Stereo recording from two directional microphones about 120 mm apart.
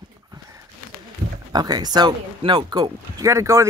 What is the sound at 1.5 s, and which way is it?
Speech, 35° right (ahead or behind).